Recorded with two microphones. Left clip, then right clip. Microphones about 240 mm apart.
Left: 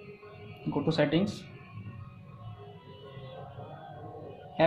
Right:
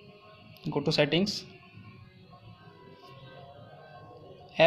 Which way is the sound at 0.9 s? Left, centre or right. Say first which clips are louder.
Right 2 dB; right.